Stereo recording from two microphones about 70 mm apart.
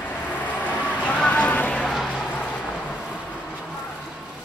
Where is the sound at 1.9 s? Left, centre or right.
Centre.